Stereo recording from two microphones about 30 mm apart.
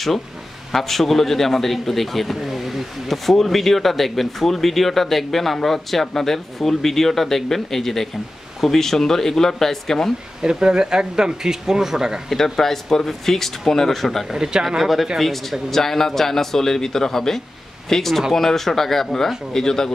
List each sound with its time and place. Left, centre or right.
0.7 s a man's voice: centre
10.4 s speech: right
12.3 s a man's voice: centre
14.3 s speech: centre
14.8 s speech: centre
15.7 s a man's voice: centre